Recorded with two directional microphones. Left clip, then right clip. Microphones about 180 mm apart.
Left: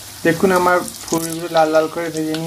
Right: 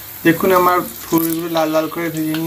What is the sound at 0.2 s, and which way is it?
Frying, 40° left (ahead or behind).